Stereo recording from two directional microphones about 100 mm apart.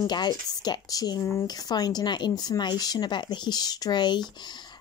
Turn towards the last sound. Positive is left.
turn(degrees=45)  # may be behind; listen again after turning